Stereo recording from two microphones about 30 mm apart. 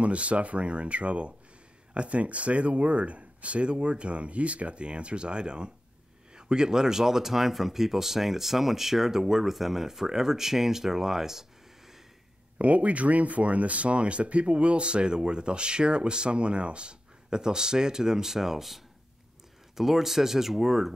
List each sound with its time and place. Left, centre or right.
0.0 s speech: right; by 11.4 s centre
12.5 s speech: right
17.3 s speech: right; by 18.8 s centre
19.8 s speech: centre